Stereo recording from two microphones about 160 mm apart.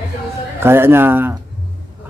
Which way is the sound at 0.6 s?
15° right (ahead or behind).